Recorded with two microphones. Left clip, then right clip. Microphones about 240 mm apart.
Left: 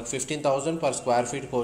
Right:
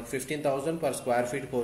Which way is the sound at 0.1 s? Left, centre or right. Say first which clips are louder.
Left 4 dB; centre.